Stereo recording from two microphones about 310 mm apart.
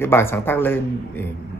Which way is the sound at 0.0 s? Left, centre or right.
Centre.